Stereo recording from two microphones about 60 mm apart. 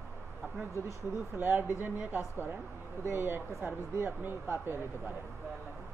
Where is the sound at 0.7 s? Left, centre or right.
Right.